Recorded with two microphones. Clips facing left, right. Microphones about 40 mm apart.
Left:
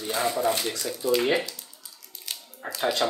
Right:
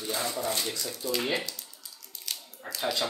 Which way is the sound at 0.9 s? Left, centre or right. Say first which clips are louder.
Left 8 dB; centre.